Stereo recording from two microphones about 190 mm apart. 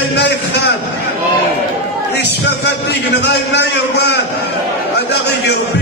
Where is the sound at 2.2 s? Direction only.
65° left (ahead or behind).